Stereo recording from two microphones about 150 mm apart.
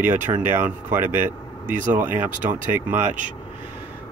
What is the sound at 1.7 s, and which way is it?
Speech, 60° right (ahead or behind).